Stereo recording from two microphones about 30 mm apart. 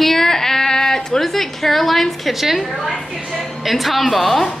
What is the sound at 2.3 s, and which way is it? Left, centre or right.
A woman's voice, centre.